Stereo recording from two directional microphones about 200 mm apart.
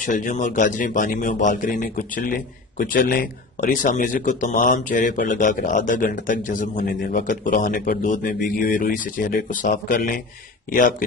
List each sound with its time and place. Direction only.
0.0 s a man's voice: 40° left (ahead or behind)